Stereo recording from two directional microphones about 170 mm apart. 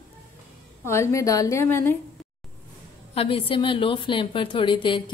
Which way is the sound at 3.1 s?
35° left (ahead or behind).